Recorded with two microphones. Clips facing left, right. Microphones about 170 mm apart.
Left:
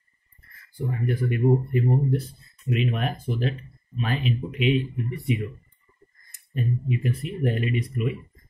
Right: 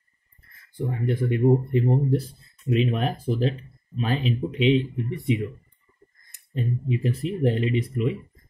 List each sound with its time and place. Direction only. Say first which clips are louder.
1.0 s speech: right 2 dB; 25° right (ahead or behind)
6.5 s speech: even; 30° right (ahead or behind)